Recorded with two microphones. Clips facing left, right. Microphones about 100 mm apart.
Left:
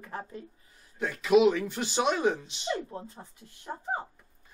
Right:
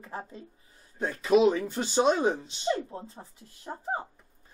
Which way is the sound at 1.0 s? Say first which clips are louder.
Even; 30° right (ahead or behind).